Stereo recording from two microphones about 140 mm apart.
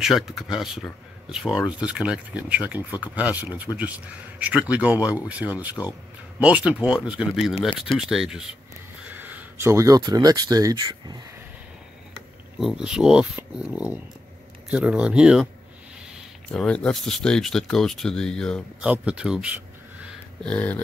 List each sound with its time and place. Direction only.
0.0 s speech: centre (ahead or behind); by 11.1 s 30° right (ahead or behind)
12.5 s speech: 5° right (ahead or behind)
16.4 s speech: 5° left (ahead or behind)
18.8 s speech: 5° right (ahead or behind)
20.4 s speech: 10° left (ahead or behind)